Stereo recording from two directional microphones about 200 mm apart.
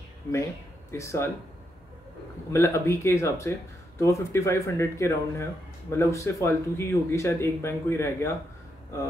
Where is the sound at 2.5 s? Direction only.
10° left (ahead or behind).